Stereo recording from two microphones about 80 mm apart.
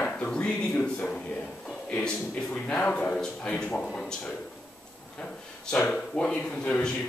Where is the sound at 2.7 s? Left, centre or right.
Centre.